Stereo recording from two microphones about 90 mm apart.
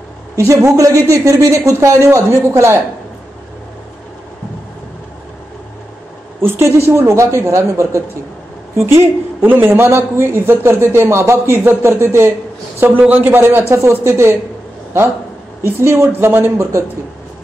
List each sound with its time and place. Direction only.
0.4 s speech: 35° right (ahead or behind)
6.4 s a woman's voice: 25° right (ahead or behind)
15.6 s a woman's voice: 30° right (ahead or behind)